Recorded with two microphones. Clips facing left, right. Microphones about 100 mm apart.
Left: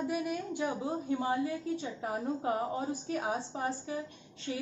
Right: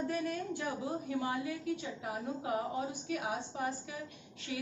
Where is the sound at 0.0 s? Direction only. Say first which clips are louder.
Left 2 dB; 10° left (ahead or behind).